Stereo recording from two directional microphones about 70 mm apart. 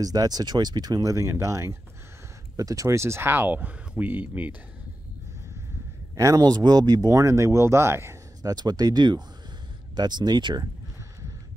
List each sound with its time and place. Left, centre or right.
0.0 s speech: right
1.1 s speech: right
6.1 s a man's voice: right
6.4 s speech: right
8.4 s speech: right